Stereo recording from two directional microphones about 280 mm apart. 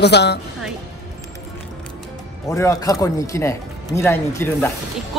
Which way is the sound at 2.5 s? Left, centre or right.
Centre.